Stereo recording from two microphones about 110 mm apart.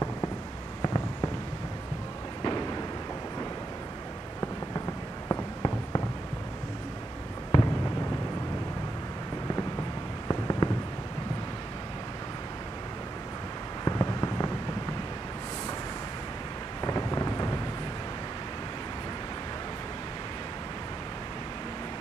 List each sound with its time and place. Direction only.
0.8 s fireworks: 35° left (ahead or behind)
2.4 s fireworks: 40° left (ahead or behind)
5.3 s a sound: 35° left (ahead or behind)
7.5 s fireworks: 35° left (ahead or behind)
10.2 s fireworks: 35° left (ahead or behind)
13.8 s fireworks: 35° left (ahead or behind)
16.8 s a sound: 35° left (ahead or behind)